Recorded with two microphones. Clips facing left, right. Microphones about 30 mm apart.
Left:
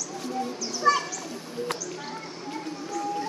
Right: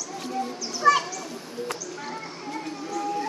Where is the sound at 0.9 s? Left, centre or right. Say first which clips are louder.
Right 3 dB; right.